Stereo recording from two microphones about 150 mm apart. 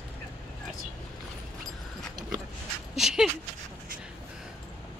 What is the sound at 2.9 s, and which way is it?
Dog, 5° right (ahead or behind).